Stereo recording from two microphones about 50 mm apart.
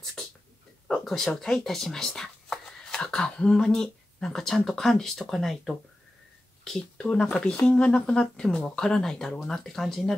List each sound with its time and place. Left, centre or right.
0.9 s speech: centre
6.6 s speech: centre